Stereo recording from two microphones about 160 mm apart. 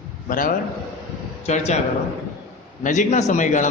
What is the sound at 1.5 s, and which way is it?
Speech, 45° left (ahead or behind).